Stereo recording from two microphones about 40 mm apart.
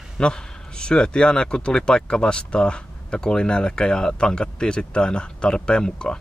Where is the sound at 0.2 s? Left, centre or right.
Left.